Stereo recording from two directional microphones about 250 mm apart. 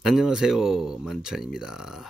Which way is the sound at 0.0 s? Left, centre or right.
Centre.